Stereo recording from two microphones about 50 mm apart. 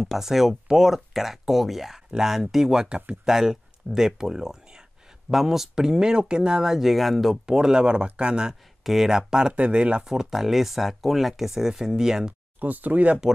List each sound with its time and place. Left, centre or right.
0.2 s speech: centre
7.4 s speech: centre
8.8 s speech: centre
9.5 s speech: right
10.0 s speech: centre
12.5 s speech: right